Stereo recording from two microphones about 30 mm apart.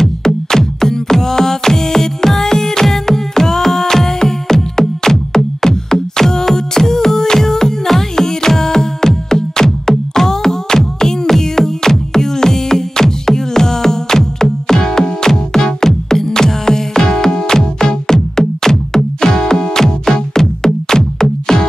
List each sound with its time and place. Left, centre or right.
0.0 s music: centre